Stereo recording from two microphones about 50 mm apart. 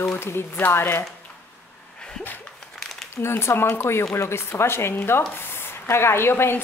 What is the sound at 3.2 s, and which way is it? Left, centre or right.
A woman's voice, left.